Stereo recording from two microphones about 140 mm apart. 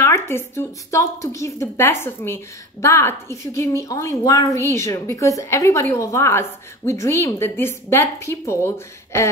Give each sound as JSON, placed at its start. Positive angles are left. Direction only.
{"t": 0.0, "sound": "a woman's voice", "side_deg": 20}